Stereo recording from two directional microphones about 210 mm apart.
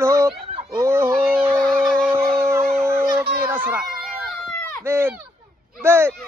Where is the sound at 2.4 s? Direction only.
10° right (ahead or behind).